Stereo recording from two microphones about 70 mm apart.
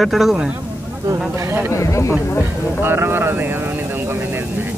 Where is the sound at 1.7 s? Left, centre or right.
Left.